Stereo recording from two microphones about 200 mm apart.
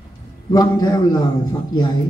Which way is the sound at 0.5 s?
20° left (ahead or behind).